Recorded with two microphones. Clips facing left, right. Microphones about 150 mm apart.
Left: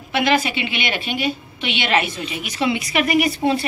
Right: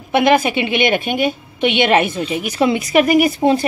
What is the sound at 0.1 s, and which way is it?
A woman's voice, 55° right (ahead or behind).